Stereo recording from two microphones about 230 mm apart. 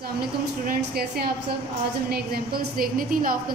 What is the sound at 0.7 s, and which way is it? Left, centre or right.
A woman's voice, right.